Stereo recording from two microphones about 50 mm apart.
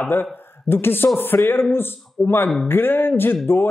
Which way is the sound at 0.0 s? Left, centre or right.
Left.